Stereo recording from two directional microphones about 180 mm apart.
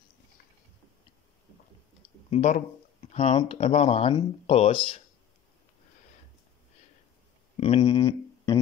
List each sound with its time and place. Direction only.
2.2 s speech: 40° left (ahead or behind)
7.5 s speech: 35° left (ahead or behind)
7.8 s speech: 20° left (ahead or behind)